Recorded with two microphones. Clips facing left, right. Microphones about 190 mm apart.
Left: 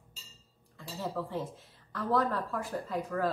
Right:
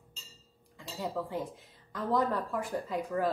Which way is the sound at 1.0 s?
15° right (ahead or behind).